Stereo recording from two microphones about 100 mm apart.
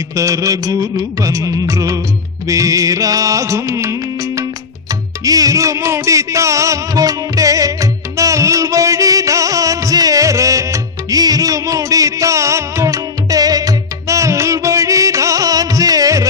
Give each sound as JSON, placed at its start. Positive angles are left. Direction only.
{"t": 0.1, "sound": "music", "side_deg": -30}